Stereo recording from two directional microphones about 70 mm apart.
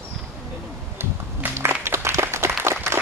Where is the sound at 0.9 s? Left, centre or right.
Right.